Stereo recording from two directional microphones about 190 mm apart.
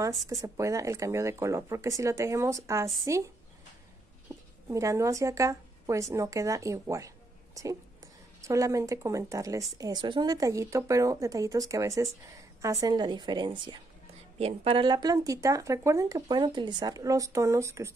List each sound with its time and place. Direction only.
0.3 s speech: 15° right (ahead or behind)
4.6 s speech: 15° right (ahead or behind)
8.4 s a woman's voice: 15° right (ahead or behind)